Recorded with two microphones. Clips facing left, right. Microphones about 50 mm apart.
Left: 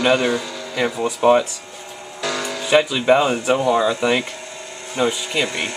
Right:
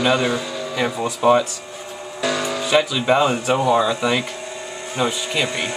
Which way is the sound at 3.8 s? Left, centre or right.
Centre.